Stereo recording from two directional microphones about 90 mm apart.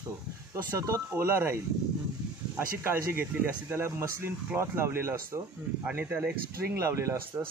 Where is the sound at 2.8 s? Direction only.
25° right (ahead or behind).